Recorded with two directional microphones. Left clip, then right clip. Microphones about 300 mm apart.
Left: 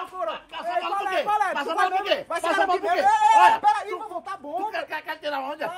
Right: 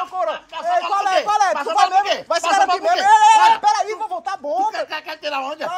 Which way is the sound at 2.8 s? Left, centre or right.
Centre.